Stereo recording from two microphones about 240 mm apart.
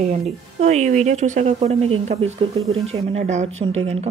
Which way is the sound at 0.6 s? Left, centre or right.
Right.